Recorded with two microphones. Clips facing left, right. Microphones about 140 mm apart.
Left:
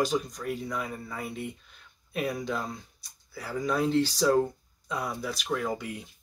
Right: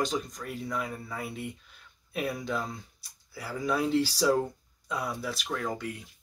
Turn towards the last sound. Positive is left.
turn(degrees=5)  # may be behind; listen again after turning